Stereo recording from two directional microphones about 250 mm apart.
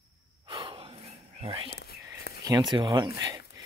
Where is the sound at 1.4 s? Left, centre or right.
Right.